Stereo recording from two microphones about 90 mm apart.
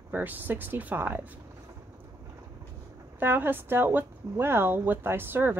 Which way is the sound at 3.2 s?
25° right (ahead or behind).